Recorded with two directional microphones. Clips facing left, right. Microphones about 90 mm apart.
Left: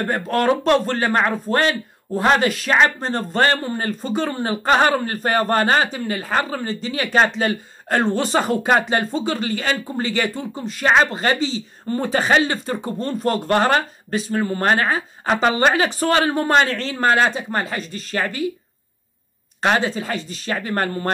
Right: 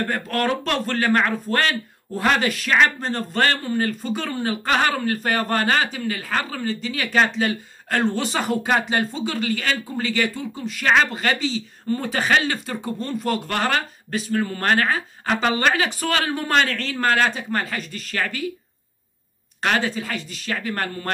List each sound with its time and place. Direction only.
0.0 s speech: 25° left (ahead or behind)
19.6 s speech: 25° left (ahead or behind)